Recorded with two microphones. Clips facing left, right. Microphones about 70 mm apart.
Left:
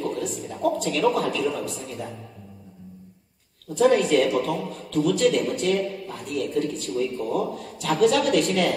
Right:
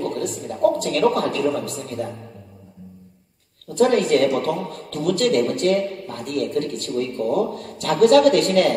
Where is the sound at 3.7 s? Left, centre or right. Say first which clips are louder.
Right 2 dB; right.